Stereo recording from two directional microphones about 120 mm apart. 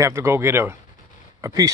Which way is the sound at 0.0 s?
25° right (ahead or behind).